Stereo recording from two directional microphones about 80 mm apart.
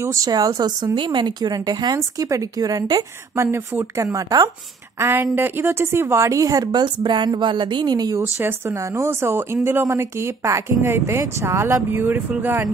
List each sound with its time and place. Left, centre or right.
0.0 s a woman's voice: right
0.9 s a woman's voice: right
2.0 s a woman's voice: right
3.3 s a woman's voice: right
4.9 s a woman's voice: right
8.2 s speech: right